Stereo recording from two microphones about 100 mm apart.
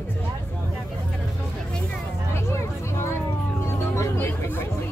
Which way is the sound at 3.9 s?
30° left (ahead or behind).